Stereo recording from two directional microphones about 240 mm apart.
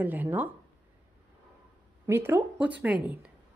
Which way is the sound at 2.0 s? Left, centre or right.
Centre.